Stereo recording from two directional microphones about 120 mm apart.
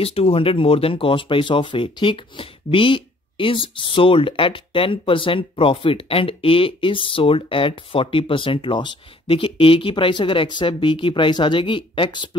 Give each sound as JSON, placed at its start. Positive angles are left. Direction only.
{"t": 0.0, "sound": "speech", "side_deg": 55}